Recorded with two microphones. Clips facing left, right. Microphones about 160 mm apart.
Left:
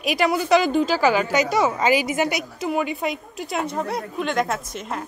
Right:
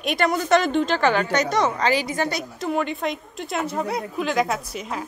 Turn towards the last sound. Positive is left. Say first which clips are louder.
# even
turn(degrees=0)  # may be behind; listen again after turning